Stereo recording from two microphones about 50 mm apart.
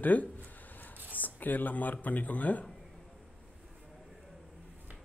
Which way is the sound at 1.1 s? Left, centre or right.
Left.